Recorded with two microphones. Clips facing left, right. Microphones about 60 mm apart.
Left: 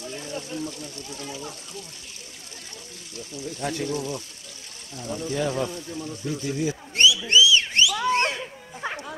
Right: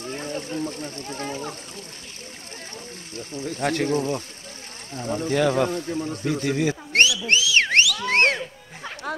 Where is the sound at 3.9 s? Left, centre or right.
Right.